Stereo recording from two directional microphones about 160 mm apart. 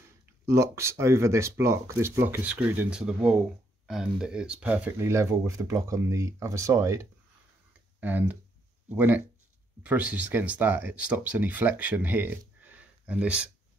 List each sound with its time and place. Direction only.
0.5 s speech: 20° right (ahead or behind)